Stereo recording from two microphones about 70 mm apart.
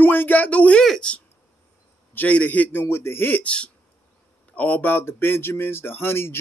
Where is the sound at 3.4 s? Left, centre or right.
Centre.